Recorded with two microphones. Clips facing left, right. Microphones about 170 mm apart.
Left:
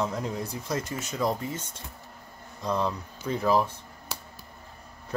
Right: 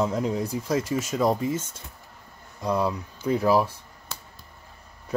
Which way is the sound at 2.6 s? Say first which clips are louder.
Right 3 dB; 10° right (ahead or behind).